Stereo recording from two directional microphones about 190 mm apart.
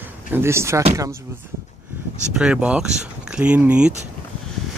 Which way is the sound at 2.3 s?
5° right (ahead or behind).